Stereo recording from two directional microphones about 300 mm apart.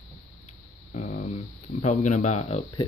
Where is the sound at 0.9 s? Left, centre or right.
Left.